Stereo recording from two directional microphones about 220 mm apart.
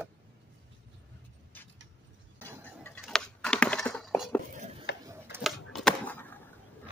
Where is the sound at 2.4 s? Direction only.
10° right (ahead or behind).